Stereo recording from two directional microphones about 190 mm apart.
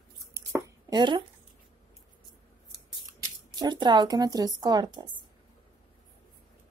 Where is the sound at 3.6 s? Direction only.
25° right (ahead or behind).